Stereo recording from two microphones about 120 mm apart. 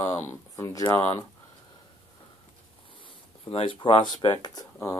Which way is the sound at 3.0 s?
45° left (ahead or behind).